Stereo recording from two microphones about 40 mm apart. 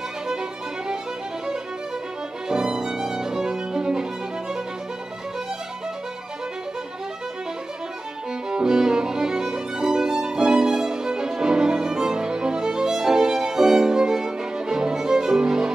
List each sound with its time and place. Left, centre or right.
0.3 s music: centre
2.5 s violin: centre
8.5 s violin: centre